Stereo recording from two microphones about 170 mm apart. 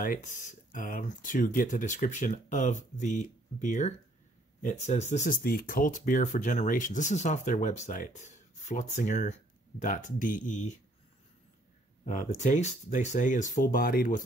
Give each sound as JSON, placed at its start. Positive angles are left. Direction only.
{"t": 0.0, "sound": "speech", "side_deg": 50}
{"t": 5.4, "sound": "speech", "side_deg": 60}
{"t": 12.1, "sound": "speech", "side_deg": 45}